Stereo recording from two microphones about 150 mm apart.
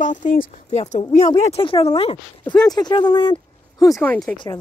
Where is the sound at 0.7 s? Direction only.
45° left (ahead or behind).